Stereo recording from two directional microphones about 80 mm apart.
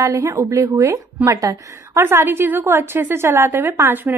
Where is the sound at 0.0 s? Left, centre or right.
Right.